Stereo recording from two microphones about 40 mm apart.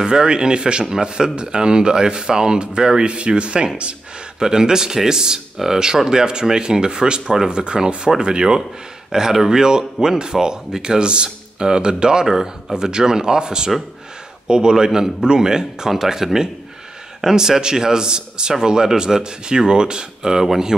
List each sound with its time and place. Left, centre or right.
0.0 s speech: centre
4.4 s a man's voice: centre